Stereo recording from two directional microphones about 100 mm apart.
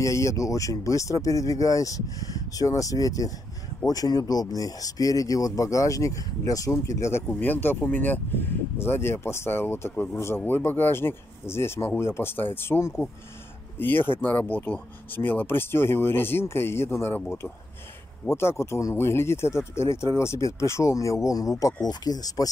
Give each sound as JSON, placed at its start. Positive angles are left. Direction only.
{"t": 0.0, "sound": "speech", "side_deg": 30}
{"t": 7.2, "sound": "speech", "side_deg": 15}